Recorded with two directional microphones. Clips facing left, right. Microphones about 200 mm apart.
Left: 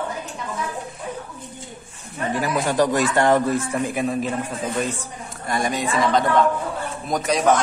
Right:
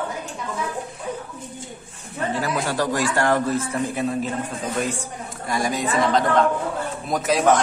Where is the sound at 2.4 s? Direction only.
20° left (ahead or behind).